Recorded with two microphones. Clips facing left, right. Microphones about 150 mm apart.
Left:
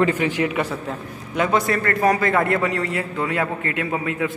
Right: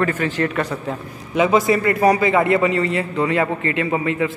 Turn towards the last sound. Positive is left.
turn(degrees=0)  # may be behind; listen again after turning